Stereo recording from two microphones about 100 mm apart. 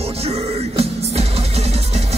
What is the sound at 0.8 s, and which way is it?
Music, 90° right.